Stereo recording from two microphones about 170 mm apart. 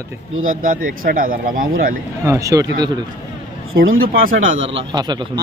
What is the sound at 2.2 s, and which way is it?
Speech, 20° right (ahead or behind).